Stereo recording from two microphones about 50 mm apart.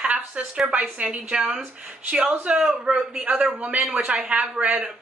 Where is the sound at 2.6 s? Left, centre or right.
Centre.